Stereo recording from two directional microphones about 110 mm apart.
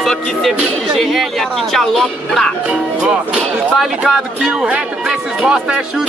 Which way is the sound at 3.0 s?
10° right (ahead or behind).